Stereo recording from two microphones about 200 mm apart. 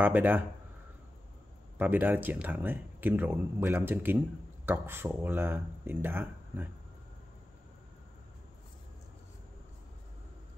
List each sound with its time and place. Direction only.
0.0 s speech: 10° right (ahead or behind)
1.8 s speech: 10° right (ahead or behind)